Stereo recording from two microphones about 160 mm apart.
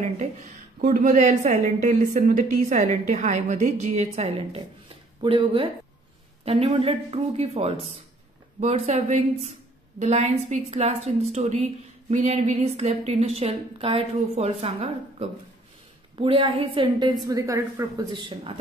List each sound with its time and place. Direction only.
0.7 s a woman's voice: 50° right (ahead or behind); by 18.0 s 20° right (ahead or behind)
18.1 s a woman's voice: 30° right (ahead or behind)